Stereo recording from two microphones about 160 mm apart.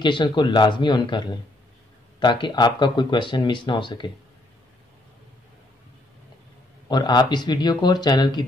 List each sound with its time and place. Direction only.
0.0 s speech: 30° left (ahead or behind)
6.9 s speech: 25° left (ahead or behind)